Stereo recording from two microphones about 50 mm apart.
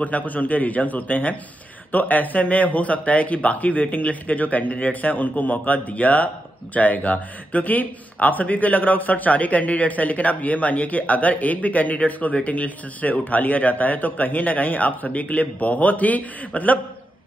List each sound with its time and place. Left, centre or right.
0.0 s a man's voice: left